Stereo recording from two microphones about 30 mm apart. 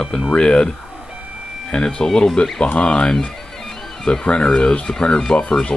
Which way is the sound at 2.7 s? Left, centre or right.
Left.